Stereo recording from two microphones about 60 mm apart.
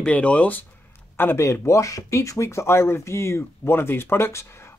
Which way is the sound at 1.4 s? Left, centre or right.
Left.